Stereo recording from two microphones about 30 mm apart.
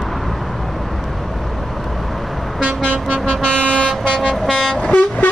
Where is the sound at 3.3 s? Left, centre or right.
Left.